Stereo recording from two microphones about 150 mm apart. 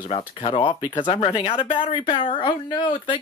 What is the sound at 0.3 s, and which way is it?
Speech, 35° left (ahead or behind).